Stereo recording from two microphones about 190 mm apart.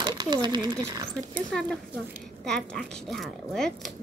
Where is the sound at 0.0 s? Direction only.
20° right (ahead or behind).